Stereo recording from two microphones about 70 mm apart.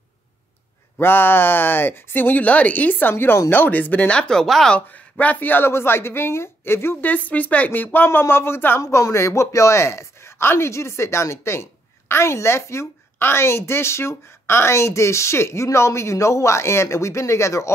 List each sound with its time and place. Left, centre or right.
0.9 s speech: left; by 4.7 s centre
4.7 s speech: centre
8.8 s speech: left